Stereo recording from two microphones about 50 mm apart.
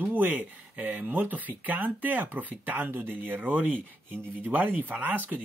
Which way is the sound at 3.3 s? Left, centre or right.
Right.